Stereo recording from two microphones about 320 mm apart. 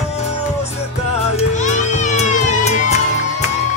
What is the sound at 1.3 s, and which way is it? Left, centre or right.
Music, left.